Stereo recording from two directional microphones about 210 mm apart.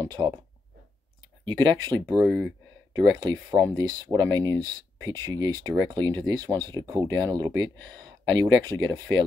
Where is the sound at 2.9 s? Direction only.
20° right (ahead or behind).